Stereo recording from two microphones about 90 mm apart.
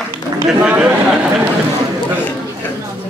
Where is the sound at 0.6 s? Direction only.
15° right (ahead or behind).